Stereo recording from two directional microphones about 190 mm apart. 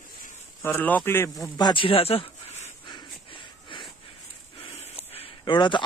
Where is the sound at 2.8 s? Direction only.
25° left (ahead or behind).